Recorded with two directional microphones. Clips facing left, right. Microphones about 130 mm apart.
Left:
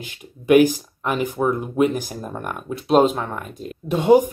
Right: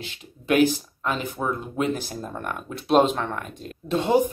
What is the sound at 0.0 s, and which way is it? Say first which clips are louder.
Speech: left 4 dB; 15° left (ahead or behind).